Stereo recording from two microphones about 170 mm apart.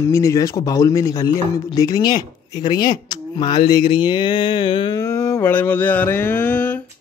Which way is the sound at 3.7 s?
25° left (ahead or behind).